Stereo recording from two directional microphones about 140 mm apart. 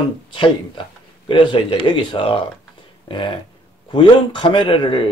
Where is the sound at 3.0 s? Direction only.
35° left (ahead or behind).